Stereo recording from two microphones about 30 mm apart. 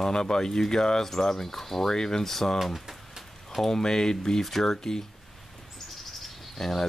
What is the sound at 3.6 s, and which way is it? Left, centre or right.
Speech, centre.